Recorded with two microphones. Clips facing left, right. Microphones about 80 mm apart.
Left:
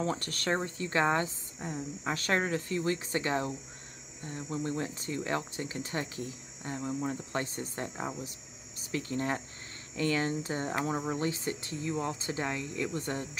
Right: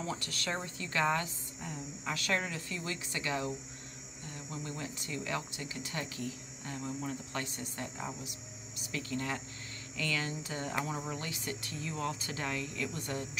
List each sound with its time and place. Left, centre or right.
0.0 s speech: left